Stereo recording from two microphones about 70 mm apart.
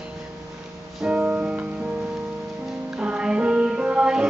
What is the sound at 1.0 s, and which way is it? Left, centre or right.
Music, centre.